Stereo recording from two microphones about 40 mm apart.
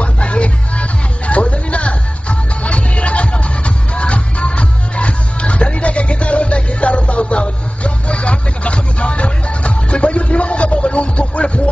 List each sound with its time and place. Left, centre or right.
0.0 s music: left